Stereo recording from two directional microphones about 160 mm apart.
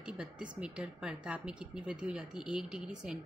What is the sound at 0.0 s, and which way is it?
A woman's voice, 5° right (ahead or behind).